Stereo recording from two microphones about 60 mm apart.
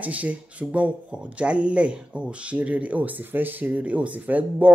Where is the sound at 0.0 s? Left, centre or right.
Right.